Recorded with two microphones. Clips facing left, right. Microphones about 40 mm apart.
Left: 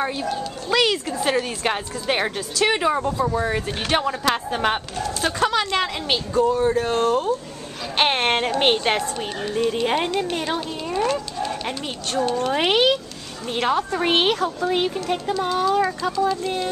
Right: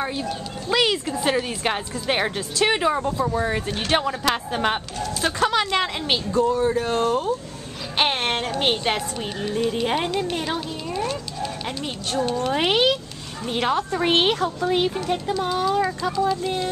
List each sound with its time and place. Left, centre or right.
0.0 s speech: centre
6.3 s a woman's voice: centre
8.0 s a woman's voice: centre
8.7 s a woman's voice: centre
11.1 s dog: centre
12.4 s speech: centre